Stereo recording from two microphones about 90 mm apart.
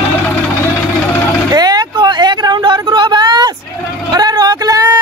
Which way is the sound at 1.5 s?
50° right (ahead or behind).